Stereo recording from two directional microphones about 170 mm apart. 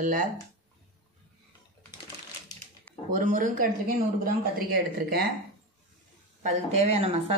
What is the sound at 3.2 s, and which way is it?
Speech, 50° right (ahead or behind).